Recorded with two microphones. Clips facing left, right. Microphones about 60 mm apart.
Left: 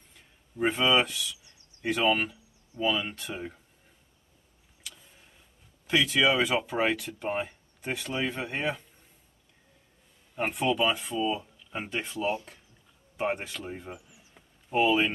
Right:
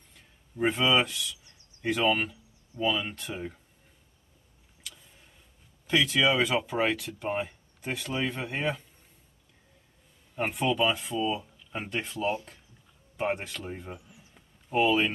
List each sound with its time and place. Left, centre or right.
0.1 s speech: centre
4.8 s tick-tock: centre
5.9 s speech: centre
10.3 s speech: centre